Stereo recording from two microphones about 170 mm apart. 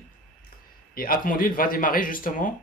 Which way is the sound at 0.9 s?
55° left (ahead or behind).